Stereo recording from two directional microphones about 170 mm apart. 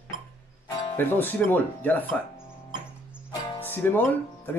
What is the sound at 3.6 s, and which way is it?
Speech, 10° left (ahead or behind).